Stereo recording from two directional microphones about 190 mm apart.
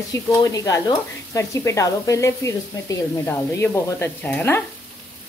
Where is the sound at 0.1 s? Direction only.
20° left (ahead or behind).